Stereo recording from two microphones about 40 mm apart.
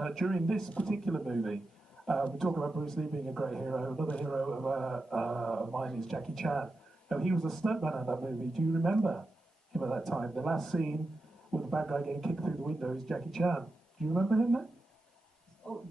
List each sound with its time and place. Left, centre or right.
0.0 s speech: centre
15.7 s heart sounds: left